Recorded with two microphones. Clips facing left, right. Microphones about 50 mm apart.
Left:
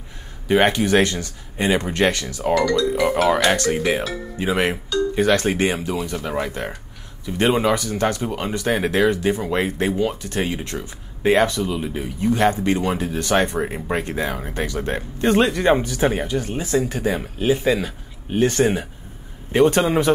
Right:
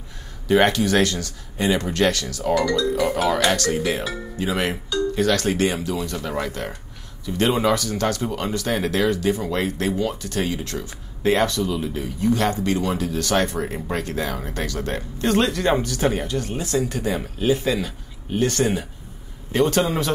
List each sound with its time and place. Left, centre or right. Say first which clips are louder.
0.5 s speech: left 1 dB; left
2.5 s speech: left 2 dB; centre
2.8 s speech: left 2 dB; left
6.2 s speech: left 2 dB; centre